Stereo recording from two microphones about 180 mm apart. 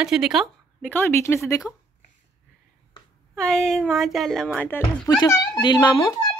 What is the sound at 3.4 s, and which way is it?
Speech, 5° left (ahead or behind).